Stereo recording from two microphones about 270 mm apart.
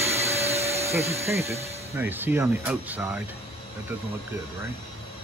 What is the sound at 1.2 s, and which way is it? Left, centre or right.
Speech, centre.